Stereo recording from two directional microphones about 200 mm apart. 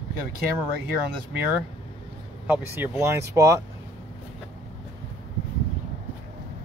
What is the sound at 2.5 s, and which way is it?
Speech, 10° right (ahead or behind).